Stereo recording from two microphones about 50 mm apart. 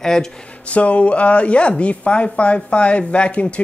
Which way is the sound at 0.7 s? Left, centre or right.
Left.